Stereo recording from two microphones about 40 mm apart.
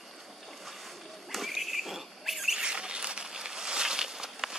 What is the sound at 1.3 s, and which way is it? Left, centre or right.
Rodents, centre.